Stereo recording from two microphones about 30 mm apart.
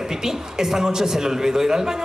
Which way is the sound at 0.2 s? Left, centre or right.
Centre.